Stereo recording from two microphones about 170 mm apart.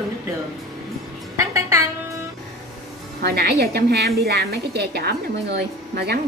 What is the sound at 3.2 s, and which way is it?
A woman's voice, 65° right (ahead or behind).